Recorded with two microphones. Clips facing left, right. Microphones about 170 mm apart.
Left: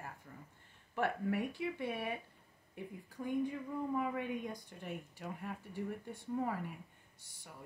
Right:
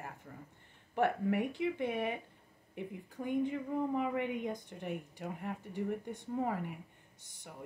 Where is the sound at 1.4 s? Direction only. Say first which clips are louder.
Right 4 dB; 20° right (ahead or behind).